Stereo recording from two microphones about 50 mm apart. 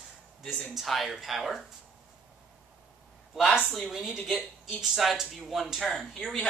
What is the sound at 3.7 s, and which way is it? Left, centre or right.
Speech, centre.